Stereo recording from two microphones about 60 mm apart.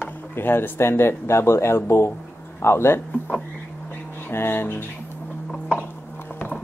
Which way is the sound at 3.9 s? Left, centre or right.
Left.